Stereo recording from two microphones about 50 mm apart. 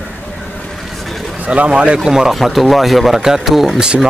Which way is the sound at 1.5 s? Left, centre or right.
Right.